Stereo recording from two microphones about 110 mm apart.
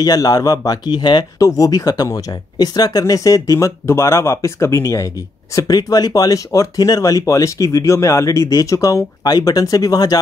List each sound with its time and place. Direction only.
0.0 s speech: 35° left (ahead or behind)